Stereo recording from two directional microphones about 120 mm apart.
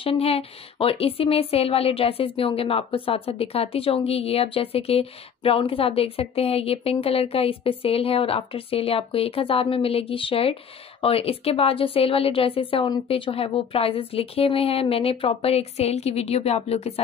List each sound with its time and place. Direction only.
0.0 s speech: 55° left (ahead or behind)